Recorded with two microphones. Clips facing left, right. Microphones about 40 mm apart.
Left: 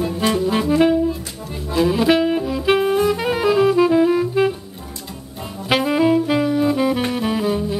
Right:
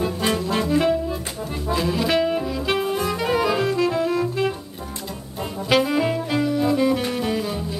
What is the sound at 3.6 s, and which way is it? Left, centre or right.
Music, centre.